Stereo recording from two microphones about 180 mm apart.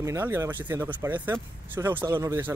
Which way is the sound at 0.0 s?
15° right (ahead or behind).